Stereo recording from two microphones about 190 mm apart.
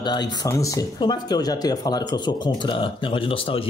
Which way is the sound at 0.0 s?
20° left (ahead or behind).